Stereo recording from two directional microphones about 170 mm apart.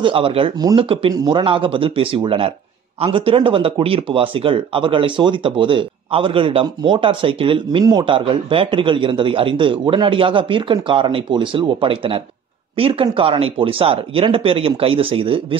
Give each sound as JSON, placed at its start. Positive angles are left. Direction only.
{"t": 0.0, "sound": "speech", "side_deg": -30}